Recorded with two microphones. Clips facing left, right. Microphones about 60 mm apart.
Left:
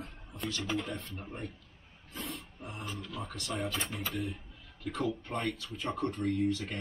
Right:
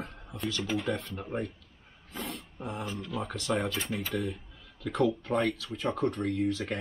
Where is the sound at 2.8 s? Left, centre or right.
Centre.